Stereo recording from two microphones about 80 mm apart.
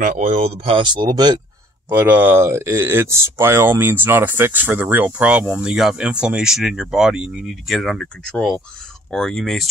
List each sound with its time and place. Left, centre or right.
0.7 s speech: right
1.1 s speech: right
1.9 s speech: right; by 9.7 s centre